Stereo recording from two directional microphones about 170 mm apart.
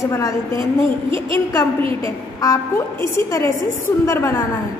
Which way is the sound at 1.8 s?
30° right (ahead or behind).